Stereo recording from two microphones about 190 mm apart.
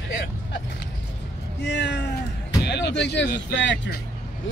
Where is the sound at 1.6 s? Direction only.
65° left (ahead or behind).